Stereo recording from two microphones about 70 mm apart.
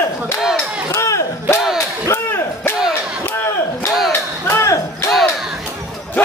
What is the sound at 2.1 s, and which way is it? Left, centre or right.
Whip, left.